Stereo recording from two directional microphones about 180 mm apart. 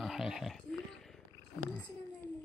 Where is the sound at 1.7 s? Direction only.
10° left (ahead or behind).